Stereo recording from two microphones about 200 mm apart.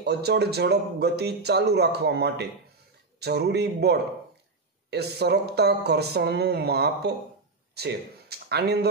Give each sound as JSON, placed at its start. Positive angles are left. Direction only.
{"t": 0.0, "sound": "speech", "side_deg": -55}